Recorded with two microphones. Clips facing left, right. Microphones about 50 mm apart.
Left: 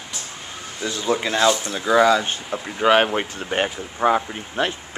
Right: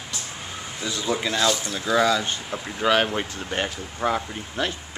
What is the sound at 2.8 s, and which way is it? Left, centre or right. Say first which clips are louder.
Speech: left 4 dB; left.